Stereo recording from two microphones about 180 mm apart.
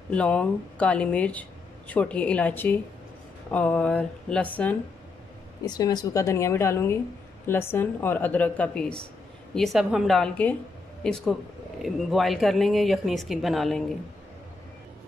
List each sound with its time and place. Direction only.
0.1 s speech: 5° left (ahead or behind)
5.7 s speech: 20° left (ahead or behind); by 13.8 s centre (ahead or behind)